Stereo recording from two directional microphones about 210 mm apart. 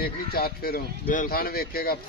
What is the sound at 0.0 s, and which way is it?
Speech, 45° left (ahead or behind).